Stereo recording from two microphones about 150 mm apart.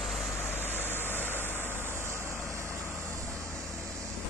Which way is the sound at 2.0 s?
15° right (ahead or behind).